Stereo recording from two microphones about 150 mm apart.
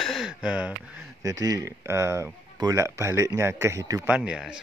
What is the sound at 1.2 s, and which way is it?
Speech, 20° right (ahead or behind).